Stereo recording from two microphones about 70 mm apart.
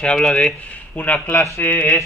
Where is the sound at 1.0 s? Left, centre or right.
Left.